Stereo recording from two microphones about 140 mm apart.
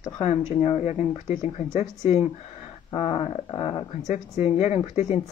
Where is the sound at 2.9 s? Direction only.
35° left (ahead or behind).